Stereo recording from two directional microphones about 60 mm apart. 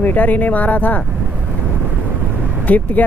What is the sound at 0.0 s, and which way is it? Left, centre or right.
Speech, left.